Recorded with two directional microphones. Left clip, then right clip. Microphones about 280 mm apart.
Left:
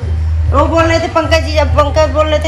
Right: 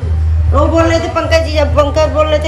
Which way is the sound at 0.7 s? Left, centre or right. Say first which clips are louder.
Even; left.